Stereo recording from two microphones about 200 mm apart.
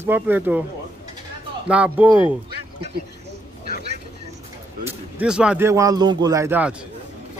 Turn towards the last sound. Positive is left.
turn(degrees=-10)  # may be behind; listen again after turning